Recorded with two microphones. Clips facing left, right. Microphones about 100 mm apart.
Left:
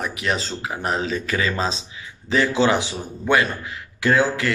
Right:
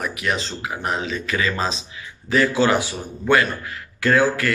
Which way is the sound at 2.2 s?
25° left (ahead or behind).